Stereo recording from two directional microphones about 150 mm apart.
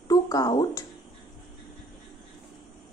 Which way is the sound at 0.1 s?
25° left (ahead or behind).